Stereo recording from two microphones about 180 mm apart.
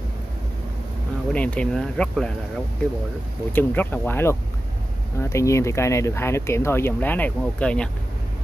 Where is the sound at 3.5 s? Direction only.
10° left (ahead or behind).